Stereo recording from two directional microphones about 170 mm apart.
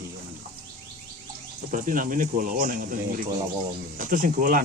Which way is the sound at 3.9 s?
50° right (ahead or behind).